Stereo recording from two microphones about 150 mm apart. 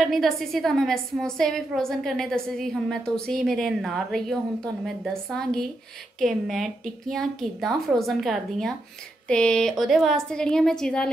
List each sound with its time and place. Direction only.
0.1 s a woman's voice: centre (ahead or behind)